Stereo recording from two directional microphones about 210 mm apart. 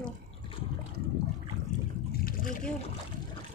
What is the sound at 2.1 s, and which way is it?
Splash, 45° left (ahead or behind).